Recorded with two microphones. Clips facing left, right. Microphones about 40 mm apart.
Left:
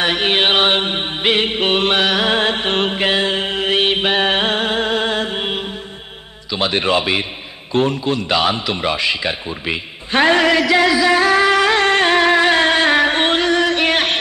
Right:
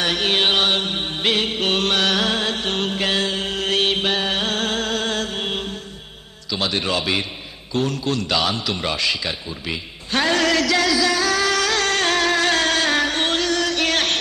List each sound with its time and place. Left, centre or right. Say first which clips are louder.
0.0 s music: left 4 dB; left
2.3 s mantra: left 6 dB; left
6.5 s a man's voice: left 5 dB; left
7.7 s a sound: left 5 dB; left